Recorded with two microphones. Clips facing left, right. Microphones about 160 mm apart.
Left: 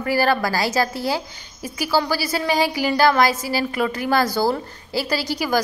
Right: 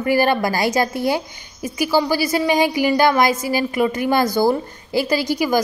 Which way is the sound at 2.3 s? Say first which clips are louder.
Right 3 dB; 15° right (ahead or behind).